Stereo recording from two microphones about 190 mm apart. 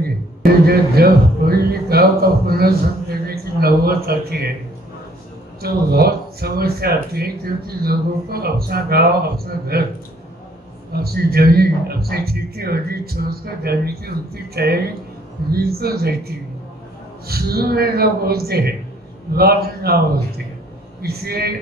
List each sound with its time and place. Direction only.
0.4 s a man's voice: 55° right (ahead or behind)
5.6 s speech: 55° right (ahead or behind)
10.9 s speech: 55° right (ahead or behind)
17.3 s speech: 55° right (ahead or behind)
21.0 s speech: 55° right (ahead or behind)